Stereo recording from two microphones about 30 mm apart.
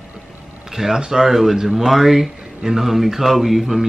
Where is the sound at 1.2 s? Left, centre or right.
Centre.